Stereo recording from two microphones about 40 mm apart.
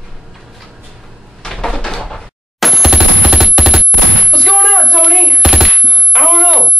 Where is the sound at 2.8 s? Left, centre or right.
Centre.